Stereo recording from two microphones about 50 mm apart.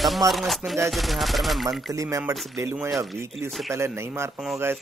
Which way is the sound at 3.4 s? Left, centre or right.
Centre.